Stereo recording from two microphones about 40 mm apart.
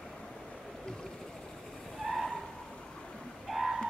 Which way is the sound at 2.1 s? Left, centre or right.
Centre.